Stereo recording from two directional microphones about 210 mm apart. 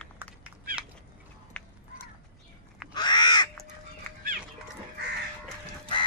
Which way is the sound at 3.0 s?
20° left (ahead or behind).